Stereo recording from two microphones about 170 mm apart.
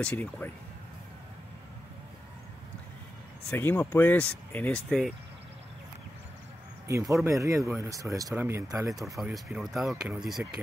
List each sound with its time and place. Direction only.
0.0 s speech: 10° left (ahead or behind)
3.4 s speech: 10° left (ahead or behind)
6.9 s speech: 20° right (ahead or behind)
9.2 s speech: 5° right (ahead or behind)